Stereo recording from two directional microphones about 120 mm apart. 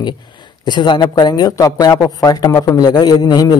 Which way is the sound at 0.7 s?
40° left (ahead or behind).